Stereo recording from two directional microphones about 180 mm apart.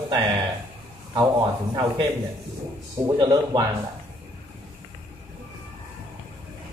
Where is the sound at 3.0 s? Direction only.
25° right (ahead or behind).